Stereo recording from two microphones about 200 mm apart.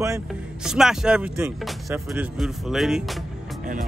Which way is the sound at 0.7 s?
5° right (ahead or behind).